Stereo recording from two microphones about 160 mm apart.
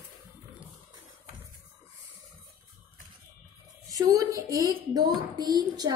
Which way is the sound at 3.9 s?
20° right (ahead or behind).